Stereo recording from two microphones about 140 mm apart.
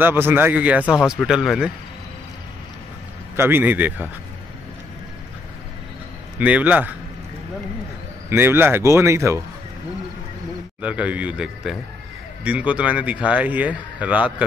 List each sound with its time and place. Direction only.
0.0 s speech: 15° right (ahead or behind)
3.3 s speech: 15° right (ahead or behind)
6.4 s speech: 10° right (ahead or behind)
8.3 s speech: 15° right (ahead or behind)
10.8 s speech: 10° right (ahead or behind)